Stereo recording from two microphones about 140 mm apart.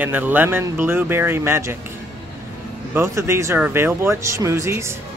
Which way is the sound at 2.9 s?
20° right (ahead or behind).